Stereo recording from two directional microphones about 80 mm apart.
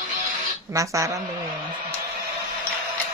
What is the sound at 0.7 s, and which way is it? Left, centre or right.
Speech, right.